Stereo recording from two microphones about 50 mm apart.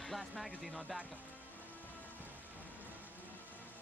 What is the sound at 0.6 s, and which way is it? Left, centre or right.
Speech, centre.